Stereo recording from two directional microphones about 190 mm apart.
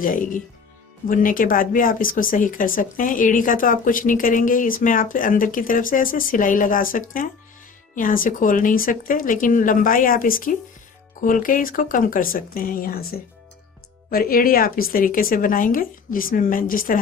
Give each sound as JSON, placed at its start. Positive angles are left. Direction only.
{"t": 0.0, "sound": "speech", "side_deg": 45}